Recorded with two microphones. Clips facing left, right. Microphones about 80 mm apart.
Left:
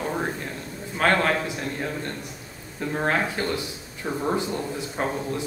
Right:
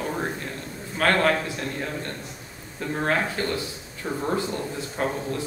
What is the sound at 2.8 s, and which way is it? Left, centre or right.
A man's voice, centre.